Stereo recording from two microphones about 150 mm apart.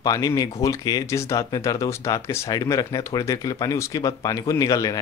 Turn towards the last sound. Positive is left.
turn(degrees=25)  # may be behind; listen again after turning